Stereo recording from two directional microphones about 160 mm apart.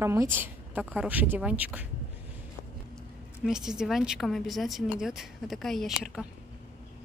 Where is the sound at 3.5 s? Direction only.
5° right (ahead or behind).